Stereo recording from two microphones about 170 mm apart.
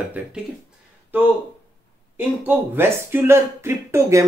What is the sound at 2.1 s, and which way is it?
Speech, 10° right (ahead or behind).